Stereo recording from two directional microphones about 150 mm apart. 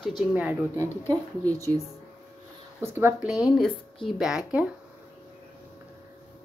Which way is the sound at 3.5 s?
Centre (ahead or behind).